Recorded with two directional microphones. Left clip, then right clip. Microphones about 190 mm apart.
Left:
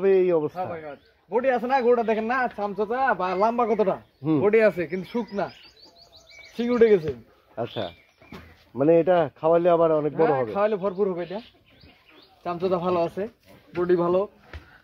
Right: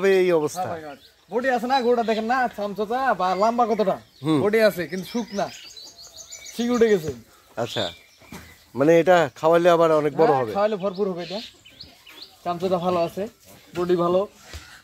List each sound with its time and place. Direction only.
0.0 s speech: 20° right (ahead or behind)
0.7 s a man's voice: 30° left (ahead or behind)
6.5 s a man's voice: 20° left (ahead or behind)
7.5 s speech: 25° right (ahead or behind)
10.5 s speech: 20° left (ahead or behind)
12.4 s speech: 5° left (ahead or behind)